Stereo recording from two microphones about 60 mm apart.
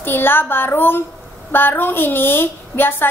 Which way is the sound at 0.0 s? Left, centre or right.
Left.